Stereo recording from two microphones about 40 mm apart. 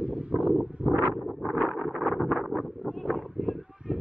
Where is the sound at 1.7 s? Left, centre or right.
Centre.